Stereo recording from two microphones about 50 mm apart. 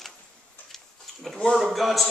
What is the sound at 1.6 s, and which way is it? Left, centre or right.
Speech, centre.